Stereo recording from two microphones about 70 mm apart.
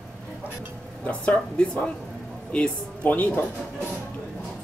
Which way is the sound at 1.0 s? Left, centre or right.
Centre.